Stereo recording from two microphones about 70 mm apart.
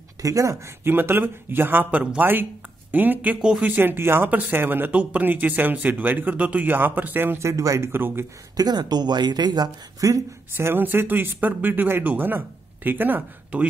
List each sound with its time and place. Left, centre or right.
0.2 s speech: right
0.8 s speech: right
3.3 s speech: centre
3.6 s speech: right
7.3 s speech: right
7.9 s speech: right
8.5 s speech: right
10.5 s speech: right